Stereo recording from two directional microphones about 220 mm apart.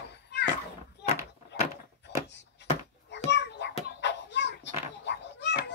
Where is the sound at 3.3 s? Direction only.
50° left (ahead or behind).